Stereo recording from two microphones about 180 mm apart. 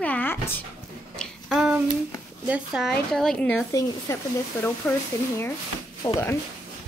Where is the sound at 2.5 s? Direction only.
5° right (ahead or behind); by 4.2 s 15° left (ahead or behind).